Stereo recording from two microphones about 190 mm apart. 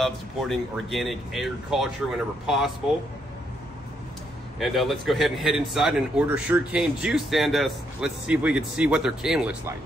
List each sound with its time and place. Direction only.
0.0 s a man's voice: centre (ahead or behind)
4.6 s a man's voice: centre (ahead or behind)